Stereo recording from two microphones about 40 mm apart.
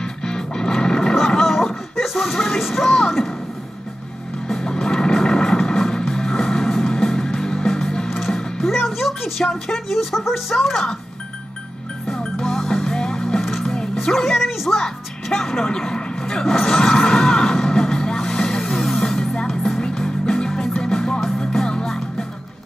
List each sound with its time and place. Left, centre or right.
0.0 s music: centre
1.4 s music: centre
4.5 s music: centre
8.1 s music: centre
9.4 s a woman's voice: centre
12.1 s music: centre
12.4 s music: centre
13.4 s music: centre
14.0 s a woman's voice: centre
14.8 s music: centre